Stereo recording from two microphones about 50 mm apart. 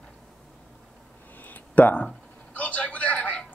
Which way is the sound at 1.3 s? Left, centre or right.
Left.